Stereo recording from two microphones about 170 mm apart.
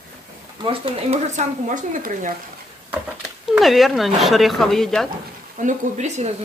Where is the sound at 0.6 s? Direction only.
35° right (ahead or behind); by 2.3 s 50° right (ahead or behind).